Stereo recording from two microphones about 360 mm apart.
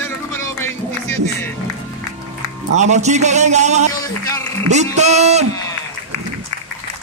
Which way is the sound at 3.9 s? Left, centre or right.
Centre.